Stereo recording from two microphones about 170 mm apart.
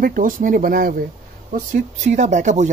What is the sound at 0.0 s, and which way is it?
Speech, 55° right (ahead or behind).